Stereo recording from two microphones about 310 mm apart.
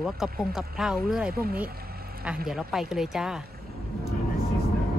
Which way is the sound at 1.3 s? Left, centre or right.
Right.